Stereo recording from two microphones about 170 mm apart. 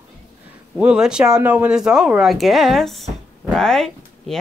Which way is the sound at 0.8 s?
5° right (ahead or behind).